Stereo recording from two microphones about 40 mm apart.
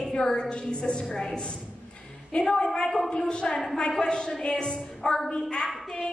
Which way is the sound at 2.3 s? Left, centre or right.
Left.